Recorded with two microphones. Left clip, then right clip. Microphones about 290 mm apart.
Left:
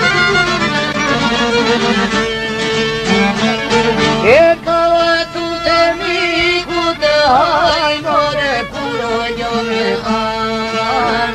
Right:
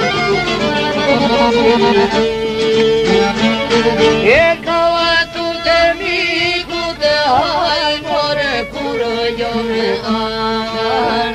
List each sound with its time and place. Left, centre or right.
4.2 s music: left